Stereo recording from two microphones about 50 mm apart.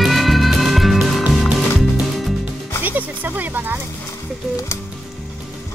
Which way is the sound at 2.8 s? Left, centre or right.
Right.